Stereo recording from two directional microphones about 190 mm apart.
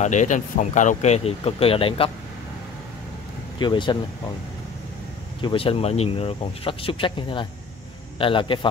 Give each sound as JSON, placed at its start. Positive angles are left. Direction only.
{"t": 0.0, "sound": "speech", "side_deg": 40}
{"t": 3.5, "sound": "speech", "side_deg": 25}
{"t": 5.4, "sound": "speech", "side_deg": 30}